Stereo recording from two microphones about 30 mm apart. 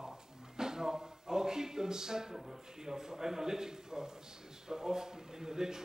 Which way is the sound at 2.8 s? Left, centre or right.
Centre.